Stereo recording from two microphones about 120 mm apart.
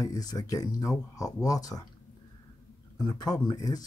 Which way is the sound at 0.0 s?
30° left (ahead or behind).